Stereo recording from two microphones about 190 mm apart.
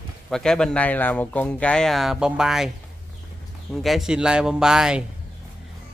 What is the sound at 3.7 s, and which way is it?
Speech, centre (ahead or behind).